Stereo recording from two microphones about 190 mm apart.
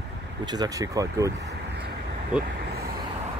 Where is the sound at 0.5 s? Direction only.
20° right (ahead or behind).